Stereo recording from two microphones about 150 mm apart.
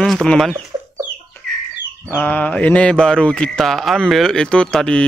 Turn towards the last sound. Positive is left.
turn(degrees=5)  # may be behind; listen again after turning